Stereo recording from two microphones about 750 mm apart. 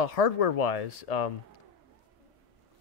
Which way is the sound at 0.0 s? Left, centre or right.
Left.